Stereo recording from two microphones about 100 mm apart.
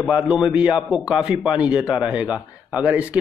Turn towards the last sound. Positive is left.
turn(degrees=-15)  # may be behind; listen again after turning